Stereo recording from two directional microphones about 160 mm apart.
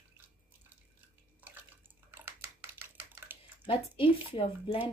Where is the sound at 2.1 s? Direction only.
15° right (ahead or behind).